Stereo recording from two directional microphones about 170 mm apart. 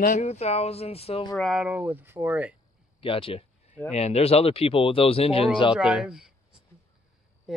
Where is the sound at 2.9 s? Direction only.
30° left (ahead or behind).